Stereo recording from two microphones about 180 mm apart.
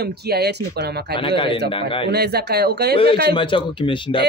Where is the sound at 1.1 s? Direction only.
30° left (ahead or behind).